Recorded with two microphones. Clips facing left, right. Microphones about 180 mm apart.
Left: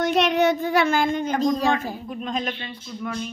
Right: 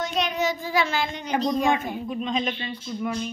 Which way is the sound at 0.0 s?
70° left (ahead or behind).